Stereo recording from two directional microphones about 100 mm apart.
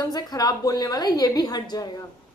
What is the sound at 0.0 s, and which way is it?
A woman's voice, 40° left (ahead or behind).